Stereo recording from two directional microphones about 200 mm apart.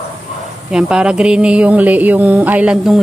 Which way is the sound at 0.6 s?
5° right (ahead or behind).